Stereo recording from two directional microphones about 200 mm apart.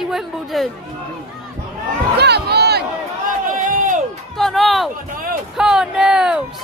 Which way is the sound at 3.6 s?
40° right (ahead or behind).